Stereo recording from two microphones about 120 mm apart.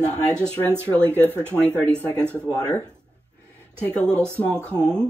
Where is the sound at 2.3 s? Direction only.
15° left (ahead or behind).